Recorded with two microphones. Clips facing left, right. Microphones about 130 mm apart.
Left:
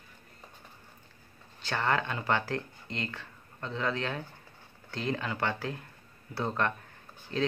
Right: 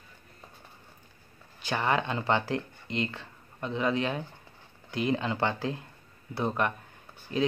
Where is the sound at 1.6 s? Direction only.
15° right (ahead or behind).